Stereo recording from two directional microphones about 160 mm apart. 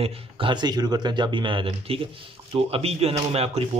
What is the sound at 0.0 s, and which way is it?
Speech, 30° right (ahead or behind).